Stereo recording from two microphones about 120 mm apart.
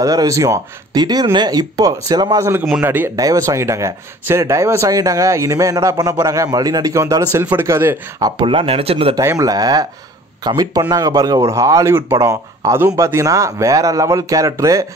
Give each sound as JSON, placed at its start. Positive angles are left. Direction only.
{"t": 0.0, "sound": "speech", "side_deg": -30}
{"t": 2.8, "sound": "speech", "side_deg": -15}
{"t": 3.2, "sound": "speech", "side_deg": -30}
{"t": 8.4, "sound": "speech", "side_deg": -50}
{"t": 9.1, "sound": "speech", "side_deg": -25}